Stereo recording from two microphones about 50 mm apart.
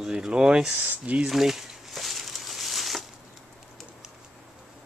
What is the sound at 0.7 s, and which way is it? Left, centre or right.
Speech, right.